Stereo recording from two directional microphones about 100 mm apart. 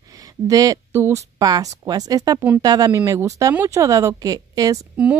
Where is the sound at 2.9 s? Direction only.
30° right (ahead or behind).